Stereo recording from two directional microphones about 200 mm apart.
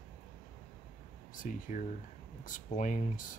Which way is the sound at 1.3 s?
40° left (ahead or behind).